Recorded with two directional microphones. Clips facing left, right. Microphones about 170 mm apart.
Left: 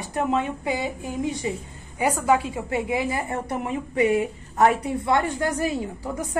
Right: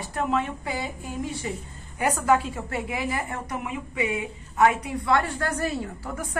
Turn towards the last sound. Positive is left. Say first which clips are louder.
# left 3 dB
turn(degrees=15)  # may be behind; listen again after turning